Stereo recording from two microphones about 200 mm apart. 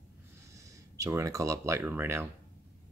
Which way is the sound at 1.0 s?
15° right (ahead or behind).